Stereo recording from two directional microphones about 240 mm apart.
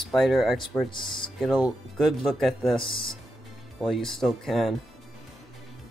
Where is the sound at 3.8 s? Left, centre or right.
Centre.